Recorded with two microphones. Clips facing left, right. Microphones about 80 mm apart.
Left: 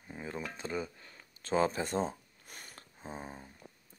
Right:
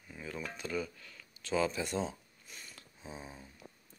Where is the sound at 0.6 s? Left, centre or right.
Left.